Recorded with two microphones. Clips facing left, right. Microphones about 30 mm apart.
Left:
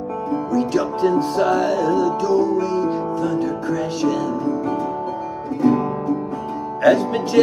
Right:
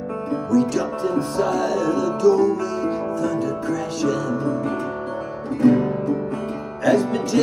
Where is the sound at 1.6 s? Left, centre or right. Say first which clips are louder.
Left 3 dB; left.